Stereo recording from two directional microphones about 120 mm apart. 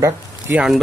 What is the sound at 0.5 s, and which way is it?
Speech, 5° right (ahead or behind).